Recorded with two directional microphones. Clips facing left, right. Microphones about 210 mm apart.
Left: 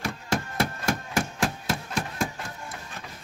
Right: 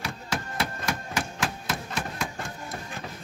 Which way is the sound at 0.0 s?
45° left (ahead or behind).